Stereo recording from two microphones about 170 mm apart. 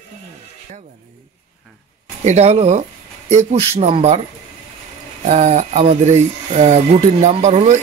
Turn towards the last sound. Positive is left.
turn(degrees=-40)  # may be behind; listen again after turning